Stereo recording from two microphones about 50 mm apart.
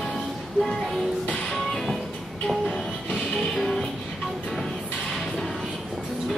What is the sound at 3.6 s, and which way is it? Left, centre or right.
Music, centre.